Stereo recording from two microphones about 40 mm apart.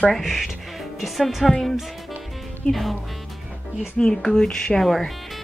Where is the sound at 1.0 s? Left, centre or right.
Centre.